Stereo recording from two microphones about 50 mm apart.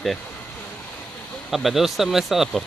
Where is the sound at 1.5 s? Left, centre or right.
Centre.